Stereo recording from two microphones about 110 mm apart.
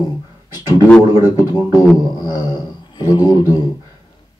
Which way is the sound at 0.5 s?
40° left (ahead or behind).